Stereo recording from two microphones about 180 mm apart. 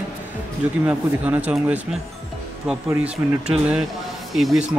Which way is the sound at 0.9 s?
10° right (ahead or behind).